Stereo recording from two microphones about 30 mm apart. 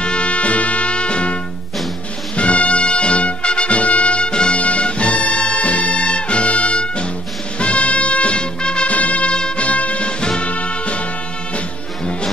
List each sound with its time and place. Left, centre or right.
0.0 s music: left
4.6 s music: left
8.8 s music: left
9.3 s music: left
9.7 s music: left
10.0 s music: left
10.4 s music: left